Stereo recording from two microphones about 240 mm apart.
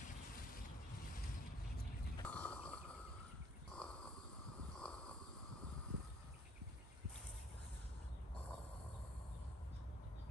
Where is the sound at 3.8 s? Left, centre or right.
Centre.